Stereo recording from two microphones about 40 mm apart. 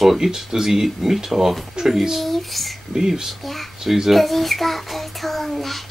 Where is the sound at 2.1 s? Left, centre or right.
Centre.